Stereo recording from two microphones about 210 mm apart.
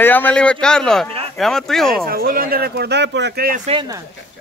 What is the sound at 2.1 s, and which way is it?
Speech, 45° right (ahead or behind).